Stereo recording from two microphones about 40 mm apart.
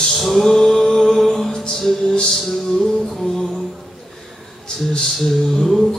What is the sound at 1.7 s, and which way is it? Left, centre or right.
Music, centre.